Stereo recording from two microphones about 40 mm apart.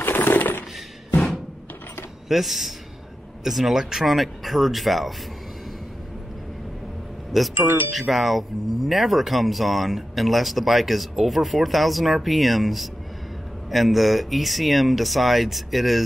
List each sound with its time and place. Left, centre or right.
0.0 s a sound: left
2.2 s speech: centre
7.5 s speech: right
7.9 s speech: centre